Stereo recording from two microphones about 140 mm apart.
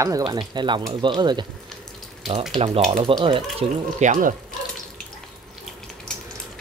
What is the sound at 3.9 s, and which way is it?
Speech, 65° right (ahead or behind).